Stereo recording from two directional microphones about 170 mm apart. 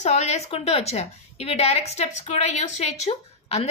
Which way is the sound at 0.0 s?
40° left (ahead or behind).